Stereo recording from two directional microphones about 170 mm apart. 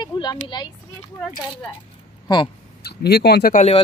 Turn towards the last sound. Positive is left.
turn(degrees=40)  # may be behind; listen again after turning